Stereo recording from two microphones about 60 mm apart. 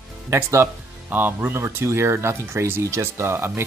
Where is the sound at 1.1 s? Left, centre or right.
Right.